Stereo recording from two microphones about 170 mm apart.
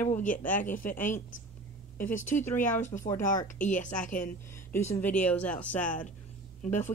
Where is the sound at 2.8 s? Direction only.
45° left (ahead or behind).